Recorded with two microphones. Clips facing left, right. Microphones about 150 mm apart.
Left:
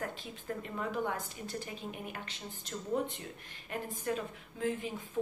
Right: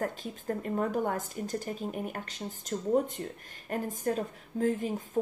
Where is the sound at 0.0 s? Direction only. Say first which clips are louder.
Right 7 dB; 45° right (ahead or behind).